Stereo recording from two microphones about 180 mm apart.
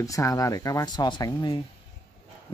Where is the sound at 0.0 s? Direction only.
20° left (ahead or behind).